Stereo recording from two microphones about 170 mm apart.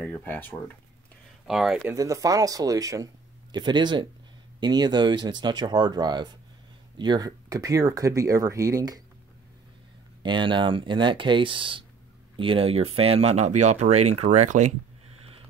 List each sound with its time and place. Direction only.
0.0 s speech: 10° left (ahead or behind)
1.5 s speech: centre (ahead or behind)
1.9 s speech: 20° right (ahead or behind)
10.2 s speech: 30° right (ahead or behind); by 14.7 s 45° right (ahead or behind)